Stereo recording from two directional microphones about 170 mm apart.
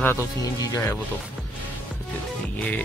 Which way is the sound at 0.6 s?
20° left (ahead or behind).